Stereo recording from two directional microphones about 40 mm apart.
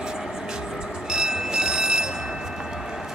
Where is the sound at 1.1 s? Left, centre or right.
Centre.